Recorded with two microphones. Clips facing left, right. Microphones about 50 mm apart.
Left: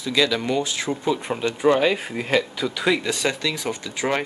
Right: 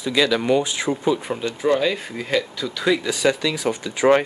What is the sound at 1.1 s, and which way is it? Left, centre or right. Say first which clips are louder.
Speech: even; centre.